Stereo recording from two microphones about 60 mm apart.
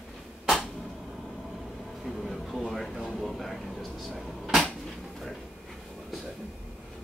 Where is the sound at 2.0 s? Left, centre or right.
Centre.